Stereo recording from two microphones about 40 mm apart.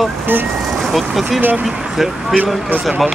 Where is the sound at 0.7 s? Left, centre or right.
Centre.